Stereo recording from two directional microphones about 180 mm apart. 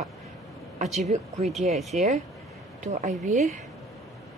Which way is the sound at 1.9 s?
45° right (ahead or behind).